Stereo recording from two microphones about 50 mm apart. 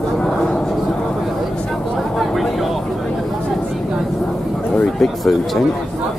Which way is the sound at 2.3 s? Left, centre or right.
Centre.